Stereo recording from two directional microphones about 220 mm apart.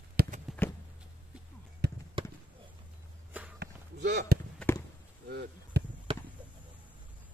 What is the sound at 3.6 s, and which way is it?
Basketball bounce, 50° right (ahead or behind).